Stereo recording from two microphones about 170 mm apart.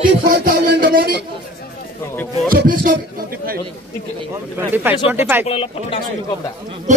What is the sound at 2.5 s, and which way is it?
Speech, 60° right (ahead or behind).